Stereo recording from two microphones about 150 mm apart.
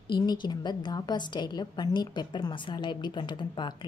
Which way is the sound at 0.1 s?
30° left (ahead or behind).